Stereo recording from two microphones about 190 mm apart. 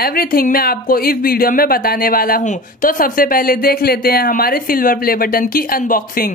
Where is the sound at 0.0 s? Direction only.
50° left (ahead or behind).